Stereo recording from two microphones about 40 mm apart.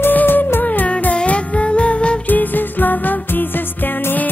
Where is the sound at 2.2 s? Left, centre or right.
Left.